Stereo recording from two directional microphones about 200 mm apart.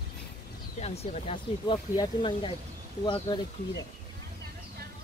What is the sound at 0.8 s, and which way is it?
Speech, 30° left (ahead or behind).